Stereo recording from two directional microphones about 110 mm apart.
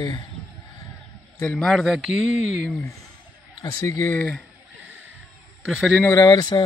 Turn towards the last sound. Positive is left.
turn(degrees=40)  # may be behind; listen again after turning